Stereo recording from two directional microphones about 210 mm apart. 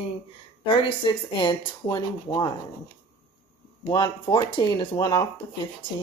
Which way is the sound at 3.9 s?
20° left (ahead or behind).